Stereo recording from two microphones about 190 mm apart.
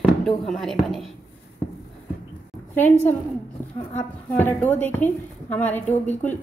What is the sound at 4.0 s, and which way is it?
A woman's voice, 10° left (ahead or behind).